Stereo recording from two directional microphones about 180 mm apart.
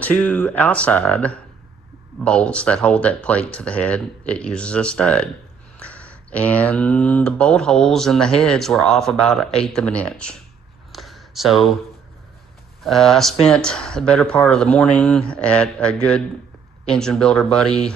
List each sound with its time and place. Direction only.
0.0 s speech: 10° left (ahead or behind)
10.9 s a sound: centre (ahead or behind)
12.8 s speech: centre (ahead or behind)